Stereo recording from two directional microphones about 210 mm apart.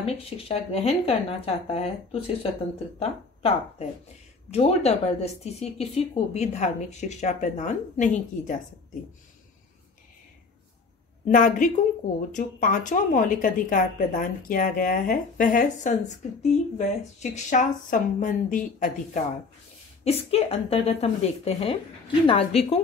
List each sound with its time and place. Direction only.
0.0 s speech: 30° left (ahead or behind)
11.2 s speech: 40° left (ahead or behind)
20.1 s speech: 30° left (ahead or behind)